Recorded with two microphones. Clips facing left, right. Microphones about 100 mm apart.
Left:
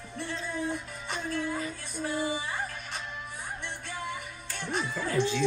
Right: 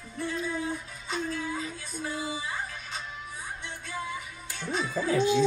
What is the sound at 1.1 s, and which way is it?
Music, 55° left (ahead or behind).